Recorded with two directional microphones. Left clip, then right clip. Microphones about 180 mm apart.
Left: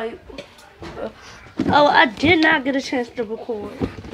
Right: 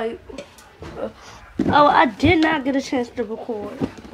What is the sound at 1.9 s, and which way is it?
A woman's voice, 15° right (ahead or behind).